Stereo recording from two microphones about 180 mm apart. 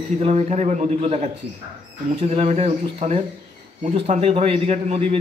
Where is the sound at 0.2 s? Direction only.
35° right (ahead or behind).